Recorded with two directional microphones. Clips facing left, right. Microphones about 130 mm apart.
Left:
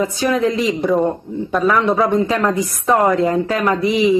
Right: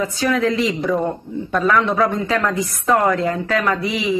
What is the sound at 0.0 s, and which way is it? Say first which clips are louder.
Speech: left 2 dB; 25° left (ahead or behind).